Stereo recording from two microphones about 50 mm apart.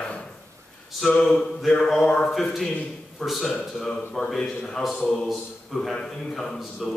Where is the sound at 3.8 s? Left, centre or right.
Centre.